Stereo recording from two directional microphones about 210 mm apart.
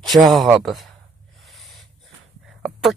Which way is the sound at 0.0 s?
Centre (ahead or behind).